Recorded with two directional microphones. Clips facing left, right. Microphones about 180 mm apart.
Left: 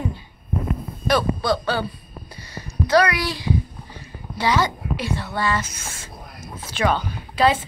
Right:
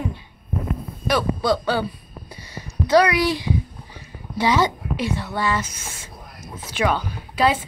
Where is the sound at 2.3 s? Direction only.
20° right (ahead or behind).